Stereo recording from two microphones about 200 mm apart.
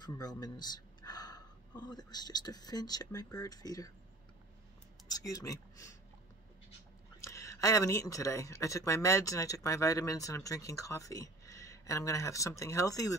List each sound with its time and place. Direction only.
0.0 s speech: 20° left (ahead or behind)
5.1 s speech: 15° left (ahead or behind)
7.2 s speech: 15° left (ahead or behind)